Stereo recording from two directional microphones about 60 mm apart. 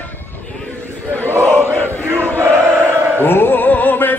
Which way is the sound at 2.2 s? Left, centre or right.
Right.